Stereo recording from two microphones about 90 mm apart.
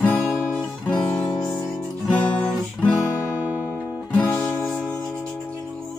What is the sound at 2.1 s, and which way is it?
Guitar, 10° left (ahead or behind).